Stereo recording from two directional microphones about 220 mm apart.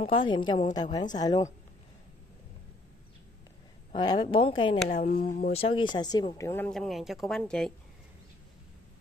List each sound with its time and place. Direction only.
0.0 s speech: 20° left (ahead or behind)
3.9 s speech: 20° left (ahead or behind)
4.9 s speech: 40° left (ahead or behind)
5.5 s speech: 25° left (ahead or behind); by 7.7 s 5° left (ahead or behind)